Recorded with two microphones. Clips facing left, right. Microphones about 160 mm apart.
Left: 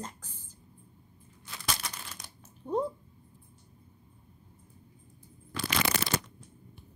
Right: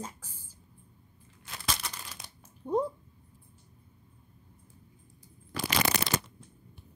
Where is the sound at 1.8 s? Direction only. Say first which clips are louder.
Even; 10° right (ahead or behind).